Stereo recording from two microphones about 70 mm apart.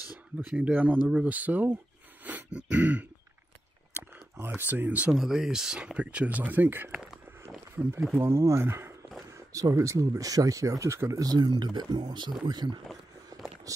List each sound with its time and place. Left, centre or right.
0.6 s speech: right
2.2 s throat clearing: centre
4.6 s speech: right
5.1 s speech: centre
6.0 s speech: right
8.1 s speech: right
9.3 s speech: right
11.1 s speech: right
13.3 s a sound: right